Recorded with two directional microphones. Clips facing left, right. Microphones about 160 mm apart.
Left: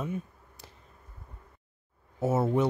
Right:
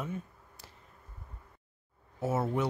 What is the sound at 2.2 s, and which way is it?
Speech, 20° left (ahead or behind).